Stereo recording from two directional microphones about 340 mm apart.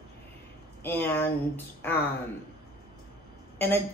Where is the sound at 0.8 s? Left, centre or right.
Centre.